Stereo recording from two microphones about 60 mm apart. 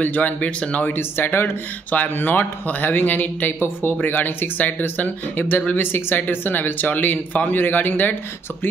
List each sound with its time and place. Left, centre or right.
0.0 s speech: left
0.9 s speech: left